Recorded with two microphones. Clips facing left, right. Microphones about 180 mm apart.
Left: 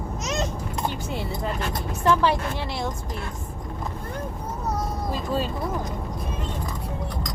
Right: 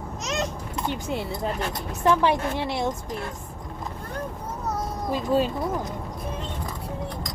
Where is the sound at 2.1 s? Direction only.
15° right (ahead or behind).